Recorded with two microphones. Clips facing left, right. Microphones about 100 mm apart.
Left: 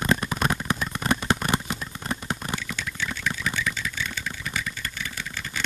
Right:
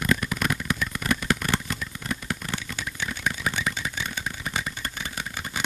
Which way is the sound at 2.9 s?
20° right (ahead or behind).